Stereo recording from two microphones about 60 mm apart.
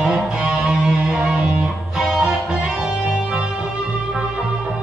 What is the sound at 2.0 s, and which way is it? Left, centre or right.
Music, centre.